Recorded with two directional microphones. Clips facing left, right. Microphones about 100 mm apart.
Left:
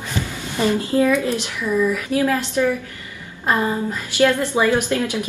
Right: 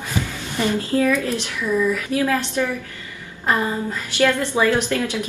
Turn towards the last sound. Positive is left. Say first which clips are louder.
# left 1 dB
turn(degrees=15)  # may be behind; listen again after turning